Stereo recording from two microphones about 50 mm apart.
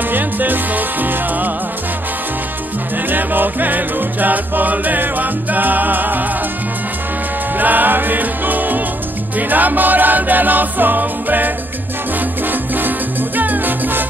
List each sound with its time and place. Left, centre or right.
0.1 s music: right
3.1 s music: right
7.5 s music: right